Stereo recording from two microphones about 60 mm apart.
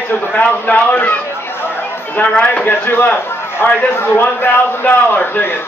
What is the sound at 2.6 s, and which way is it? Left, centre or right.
A man's voice, left.